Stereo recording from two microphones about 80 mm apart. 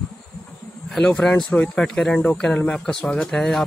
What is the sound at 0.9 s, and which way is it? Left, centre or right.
Speech, centre.